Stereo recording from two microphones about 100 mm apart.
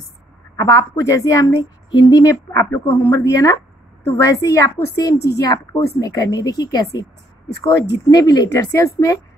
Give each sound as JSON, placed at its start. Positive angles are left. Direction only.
{"t": 0.6, "sound": "a woman's voice", "side_deg": 30}
{"t": 5.0, "sound": "speech", "side_deg": 35}